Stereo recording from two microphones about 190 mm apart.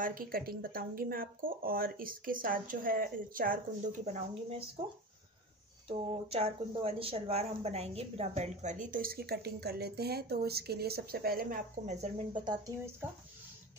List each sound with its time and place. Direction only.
0.0 s speech: 50° right (ahead or behind)
5.9 s speech: 30° right (ahead or behind)
12.4 s speech: 20° right (ahead or behind)